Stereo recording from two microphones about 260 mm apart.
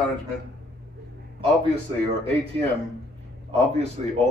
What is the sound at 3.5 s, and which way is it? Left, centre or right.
Speech, right.